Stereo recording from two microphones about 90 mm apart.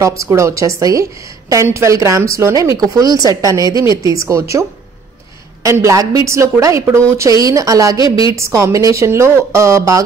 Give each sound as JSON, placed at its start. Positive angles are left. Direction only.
{"t": 0.0, "sound": "speech", "side_deg": -35}